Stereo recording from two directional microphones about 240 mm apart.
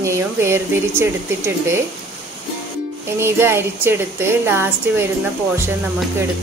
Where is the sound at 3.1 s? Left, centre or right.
Centre.